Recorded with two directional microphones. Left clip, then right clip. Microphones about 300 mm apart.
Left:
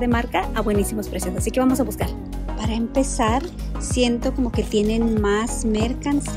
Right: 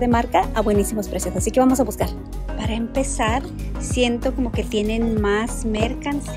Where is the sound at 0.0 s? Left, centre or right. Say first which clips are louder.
Right 4 dB; centre.